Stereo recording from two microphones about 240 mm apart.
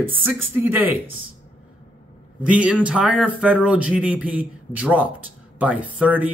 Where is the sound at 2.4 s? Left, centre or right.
Centre.